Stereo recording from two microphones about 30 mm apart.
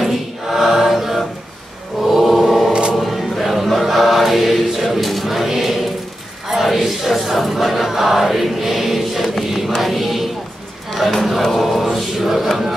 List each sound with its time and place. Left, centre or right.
0.0 s choir: centre
2.1 s music: centre
2.7 s music: right
3.0 s choir: centre
4.9 s a sound: centre
6.5 s chant: centre
9.8 s a sound: centre
10.9 s chatter: centre
11.5 s mantra: centre